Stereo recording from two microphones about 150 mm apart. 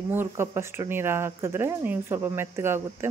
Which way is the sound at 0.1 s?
15° right (ahead or behind).